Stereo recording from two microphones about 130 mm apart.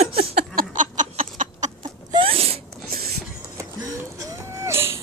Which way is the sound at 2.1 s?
45° right (ahead or behind).